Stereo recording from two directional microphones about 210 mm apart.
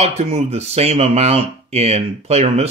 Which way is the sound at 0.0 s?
30° right (ahead or behind).